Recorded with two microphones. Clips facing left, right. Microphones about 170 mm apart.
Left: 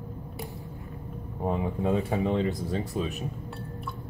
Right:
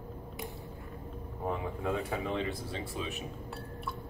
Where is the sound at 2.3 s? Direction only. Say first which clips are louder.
Left 7 dB; 40° left (ahead or behind).